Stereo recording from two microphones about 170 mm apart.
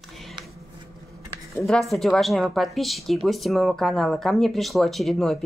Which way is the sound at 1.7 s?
Centre (ahead or behind).